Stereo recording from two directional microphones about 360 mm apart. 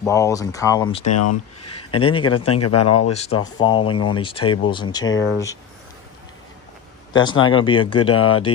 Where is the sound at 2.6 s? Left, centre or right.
Left.